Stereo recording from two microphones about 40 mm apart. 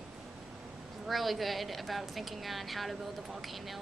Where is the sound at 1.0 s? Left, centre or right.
Centre.